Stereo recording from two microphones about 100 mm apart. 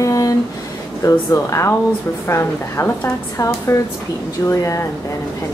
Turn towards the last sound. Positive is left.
turn(degrees=30)  # may be behind; listen again after turning